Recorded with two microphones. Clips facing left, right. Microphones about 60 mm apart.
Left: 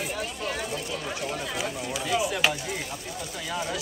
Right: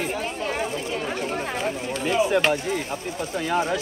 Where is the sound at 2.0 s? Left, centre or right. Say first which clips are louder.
Right 7 dB; right.